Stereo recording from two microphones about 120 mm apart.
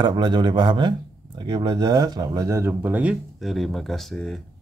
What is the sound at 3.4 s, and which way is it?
Speech, centre (ahead or behind).